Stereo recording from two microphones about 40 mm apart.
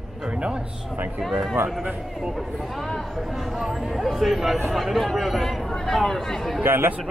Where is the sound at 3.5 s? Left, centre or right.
Centre.